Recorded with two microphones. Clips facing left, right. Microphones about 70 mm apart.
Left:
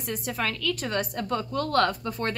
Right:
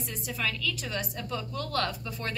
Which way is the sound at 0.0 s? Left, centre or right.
Left.